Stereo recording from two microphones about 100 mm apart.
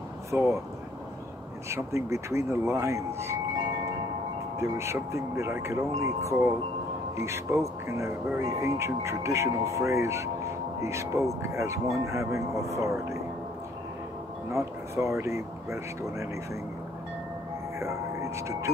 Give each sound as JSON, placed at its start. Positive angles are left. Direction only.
{"t": 0.3, "sound": "speech", "side_deg": -25}
{"t": 1.7, "sound": "speech", "side_deg": -30}
{"t": 4.6, "sound": "speech", "side_deg": -30}
{"t": 14.5, "sound": "speech", "side_deg": -30}
{"t": 17.7, "sound": "speech", "side_deg": -30}